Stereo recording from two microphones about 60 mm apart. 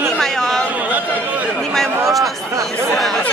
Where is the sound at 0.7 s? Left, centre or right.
Right.